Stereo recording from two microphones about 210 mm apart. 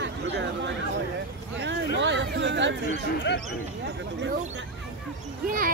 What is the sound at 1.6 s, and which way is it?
Vehicle, 55° right (ahead or behind).